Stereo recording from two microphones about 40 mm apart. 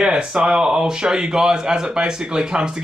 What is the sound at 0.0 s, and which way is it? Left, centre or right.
Speech, centre.